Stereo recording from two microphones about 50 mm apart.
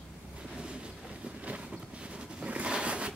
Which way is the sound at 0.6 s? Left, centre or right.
Centre.